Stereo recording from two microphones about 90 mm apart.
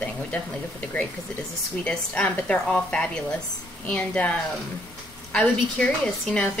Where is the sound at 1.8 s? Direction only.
15° left (ahead or behind).